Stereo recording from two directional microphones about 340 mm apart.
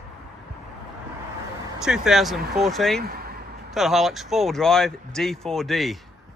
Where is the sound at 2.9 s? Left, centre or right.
Right.